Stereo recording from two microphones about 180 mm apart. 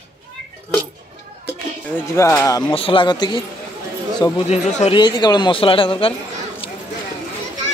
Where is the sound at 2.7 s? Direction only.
30° left (ahead or behind).